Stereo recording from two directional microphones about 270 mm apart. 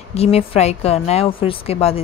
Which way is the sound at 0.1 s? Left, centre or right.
Left.